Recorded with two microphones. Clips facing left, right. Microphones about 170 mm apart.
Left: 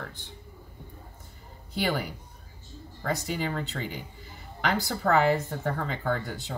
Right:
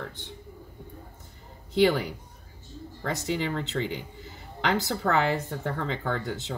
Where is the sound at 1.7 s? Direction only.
20° right (ahead or behind).